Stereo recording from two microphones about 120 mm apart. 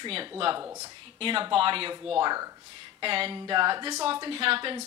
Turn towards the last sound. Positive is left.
turn(degrees=-45)  # may be behind; listen again after turning